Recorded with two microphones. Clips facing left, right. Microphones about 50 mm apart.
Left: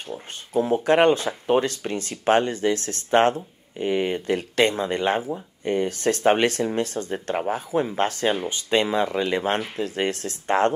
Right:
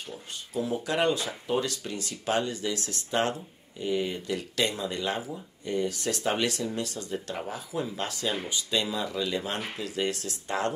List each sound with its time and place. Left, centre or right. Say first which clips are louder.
0.1 s speech: left 10 dB; left